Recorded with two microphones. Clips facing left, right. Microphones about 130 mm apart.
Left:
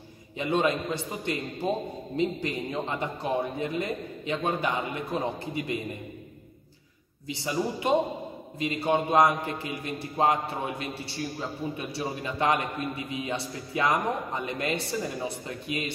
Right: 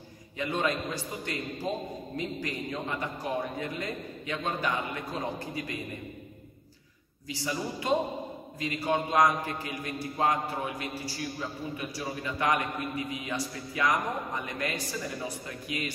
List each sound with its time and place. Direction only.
0.4 s a man's voice: 20° left (ahead or behind)
7.2 s a man's voice: 20° left (ahead or behind)